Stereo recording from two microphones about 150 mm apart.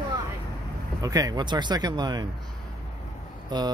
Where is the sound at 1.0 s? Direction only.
25° right (ahead or behind).